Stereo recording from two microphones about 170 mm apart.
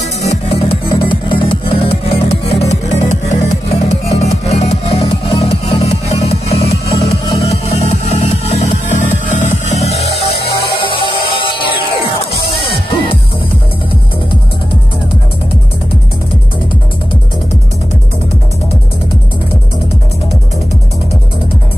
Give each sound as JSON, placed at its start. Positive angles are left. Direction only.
{"t": 0.3, "sound": "music", "side_deg": 35}
{"t": 12.9, "sound": "music", "side_deg": 30}